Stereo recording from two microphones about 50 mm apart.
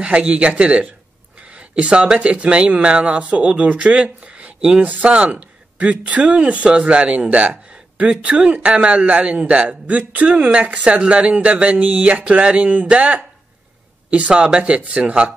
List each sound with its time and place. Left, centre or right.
0.2 s a man's voice: right
1.4 s a sound: right
2.1 s a man's voice: right